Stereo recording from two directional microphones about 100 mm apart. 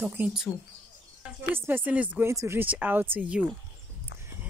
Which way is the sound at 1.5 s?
20° right (ahead or behind).